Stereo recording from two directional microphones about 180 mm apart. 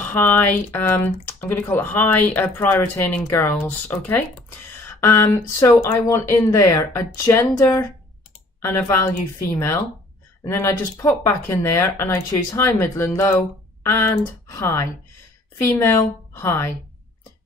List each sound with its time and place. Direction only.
0.0 s speech: 10° left (ahead or behind)